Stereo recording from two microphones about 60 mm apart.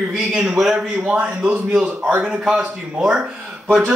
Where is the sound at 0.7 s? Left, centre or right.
Right.